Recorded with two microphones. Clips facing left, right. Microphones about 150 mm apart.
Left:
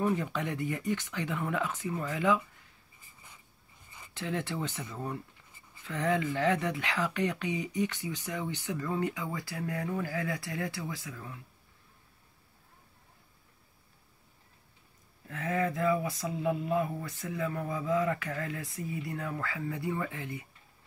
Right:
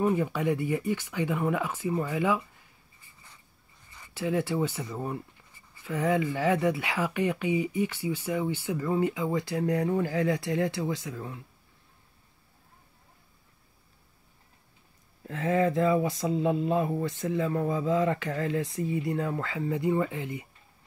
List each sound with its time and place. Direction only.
0.0 s speech: 10° right (ahead or behind)
4.1 s speech: 10° right (ahead or behind); by 11.3 s 30° right (ahead or behind)
15.2 s speech: 25° right (ahead or behind)